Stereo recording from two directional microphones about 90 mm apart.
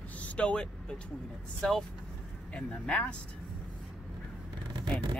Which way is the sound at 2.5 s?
10° left (ahead or behind).